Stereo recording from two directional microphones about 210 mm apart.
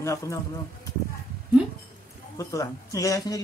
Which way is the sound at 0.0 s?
15° left (ahead or behind).